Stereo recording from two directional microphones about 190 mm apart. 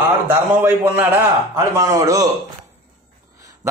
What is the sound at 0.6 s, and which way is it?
A man's voice, 10° right (ahead or behind).